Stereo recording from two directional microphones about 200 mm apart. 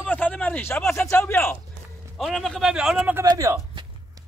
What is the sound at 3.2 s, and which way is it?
Speech, 15° right (ahead or behind).